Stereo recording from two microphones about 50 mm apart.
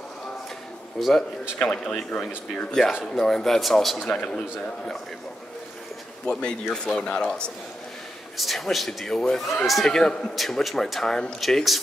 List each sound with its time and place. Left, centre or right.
0.9 s speech: centre
1.6 s speech: centre
4.0 s a man's voice: centre
6.2 s speech: centre
8.4 s speech: centre
11.4 s speech: centre